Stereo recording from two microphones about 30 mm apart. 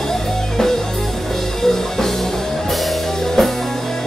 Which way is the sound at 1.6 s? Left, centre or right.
Centre.